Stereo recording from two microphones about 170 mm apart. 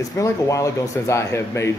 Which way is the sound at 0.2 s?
20° left (ahead or behind).